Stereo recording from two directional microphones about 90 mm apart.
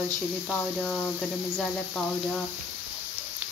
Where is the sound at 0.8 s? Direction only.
10° left (ahead or behind).